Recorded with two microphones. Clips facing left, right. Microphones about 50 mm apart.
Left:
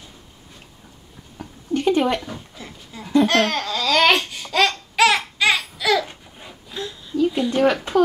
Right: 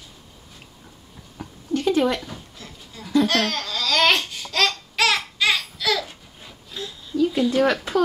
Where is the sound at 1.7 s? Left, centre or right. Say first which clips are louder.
Left 2 dB; left.